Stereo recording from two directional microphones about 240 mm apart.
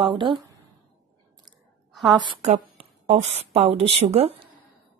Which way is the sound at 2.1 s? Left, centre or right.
Centre.